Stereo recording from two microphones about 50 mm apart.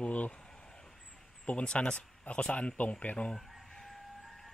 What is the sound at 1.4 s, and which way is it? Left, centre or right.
Speech, left.